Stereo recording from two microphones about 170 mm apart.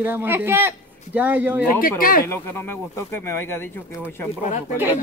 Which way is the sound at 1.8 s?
55° left (ahead or behind).